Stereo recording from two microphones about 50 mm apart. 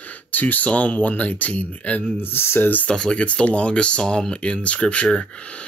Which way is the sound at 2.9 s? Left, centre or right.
Centre.